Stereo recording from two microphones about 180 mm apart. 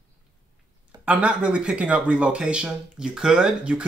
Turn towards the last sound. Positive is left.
turn(degrees=-5)  # may be behind; listen again after turning